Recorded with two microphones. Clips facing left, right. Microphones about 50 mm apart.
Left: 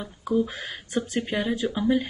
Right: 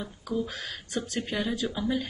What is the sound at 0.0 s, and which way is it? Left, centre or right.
Speech, left.